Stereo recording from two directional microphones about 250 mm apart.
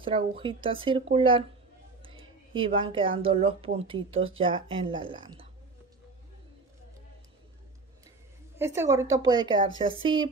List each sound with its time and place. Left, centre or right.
0.4 s speech: right
2.5 s speech: right
8.5 s a woman's voice: centre